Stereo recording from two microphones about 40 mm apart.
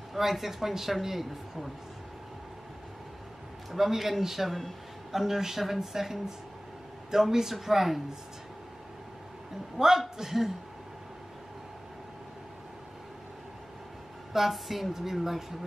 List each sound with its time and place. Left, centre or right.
0.1 s speech: centre
3.7 s speech: centre
4.5 s speech: centre
5.1 s speech: centre
9.8 s speech: centre
14.3 s speech: centre